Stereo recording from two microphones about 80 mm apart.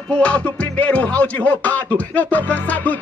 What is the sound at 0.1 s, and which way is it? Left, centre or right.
Music, centre.